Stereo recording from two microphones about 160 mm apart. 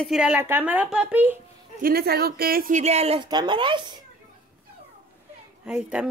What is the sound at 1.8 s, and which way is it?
Speech, 70° right (ahead or behind).